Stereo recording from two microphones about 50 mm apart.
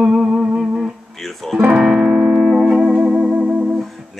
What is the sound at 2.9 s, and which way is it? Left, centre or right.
Music, right.